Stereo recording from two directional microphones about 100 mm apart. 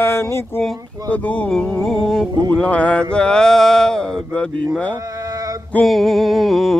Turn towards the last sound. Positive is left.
turn(degrees=0)  # may be behind; listen again after turning